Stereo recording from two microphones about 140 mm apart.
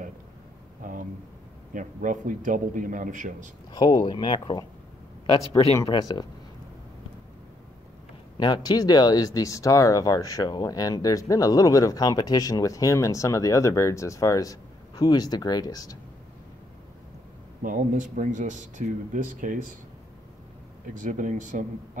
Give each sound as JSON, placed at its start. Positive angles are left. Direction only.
{"t": 1.7, "sound": "a man's voice", "side_deg": -70}
{"t": 3.7, "sound": "speech", "side_deg": 30}
{"t": 5.9, "sound": "speech", "side_deg": 30}
{"t": 8.4, "sound": "speech", "side_deg": 30}
{"t": 17.6, "sound": "speech", "side_deg": -65}
{"t": 20.9, "sound": "a man's voice", "side_deg": -70}